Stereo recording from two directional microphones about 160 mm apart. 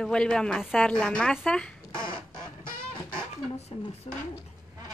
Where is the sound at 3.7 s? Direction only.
35° left (ahead or behind).